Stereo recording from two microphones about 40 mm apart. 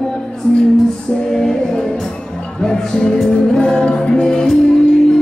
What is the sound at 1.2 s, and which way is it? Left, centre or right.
Music, centre.